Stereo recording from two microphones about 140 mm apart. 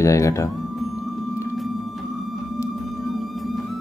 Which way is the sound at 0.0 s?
20° left (ahead or behind).